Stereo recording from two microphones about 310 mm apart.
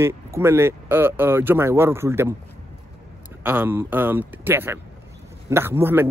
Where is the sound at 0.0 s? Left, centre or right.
Centre.